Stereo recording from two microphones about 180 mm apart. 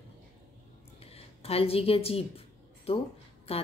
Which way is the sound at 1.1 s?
35° left (ahead or behind).